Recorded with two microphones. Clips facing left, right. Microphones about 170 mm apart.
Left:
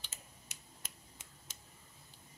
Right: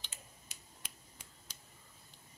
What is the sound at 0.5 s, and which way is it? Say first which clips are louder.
Finger snapping: left 1 dB; 70° left (ahead or behind).